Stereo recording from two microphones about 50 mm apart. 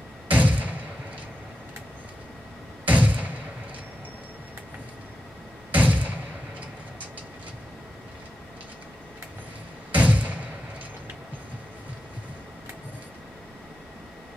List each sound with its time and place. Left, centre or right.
0.3 s thump: right
2.9 s thump: right
5.7 s thump: right
9.9 s thump: right